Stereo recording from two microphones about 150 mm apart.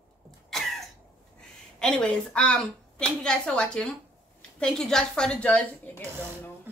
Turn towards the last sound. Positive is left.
turn(degrees=10)  # may be behind; listen again after turning